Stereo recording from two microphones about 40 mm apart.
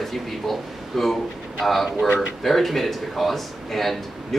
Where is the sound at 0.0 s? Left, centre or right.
Centre.